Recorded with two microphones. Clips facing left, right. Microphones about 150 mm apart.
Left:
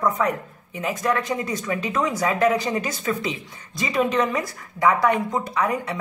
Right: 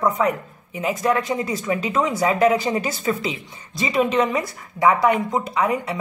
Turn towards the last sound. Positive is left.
turn(degrees=-20)  # may be behind; listen again after turning